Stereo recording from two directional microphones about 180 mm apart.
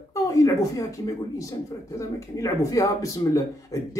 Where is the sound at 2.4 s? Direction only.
20° left (ahead or behind).